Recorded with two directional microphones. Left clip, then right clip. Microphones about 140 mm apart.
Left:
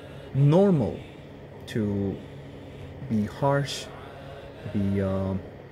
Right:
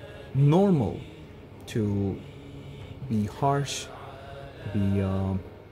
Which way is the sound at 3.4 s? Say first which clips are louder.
Left 1 dB; 15° right (ahead or behind).